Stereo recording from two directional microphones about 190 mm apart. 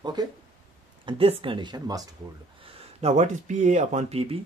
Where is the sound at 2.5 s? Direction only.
30° right (ahead or behind).